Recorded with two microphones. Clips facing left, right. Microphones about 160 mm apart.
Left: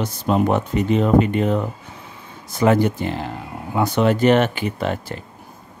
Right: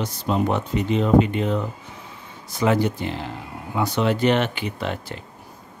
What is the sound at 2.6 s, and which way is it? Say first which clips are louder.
Speech: left 4 dB; 50° left (ahead or behind).